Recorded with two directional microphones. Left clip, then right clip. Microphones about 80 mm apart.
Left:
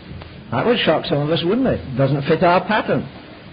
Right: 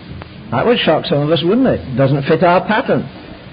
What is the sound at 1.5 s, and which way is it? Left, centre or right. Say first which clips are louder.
A man's voice: right 5 dB; left.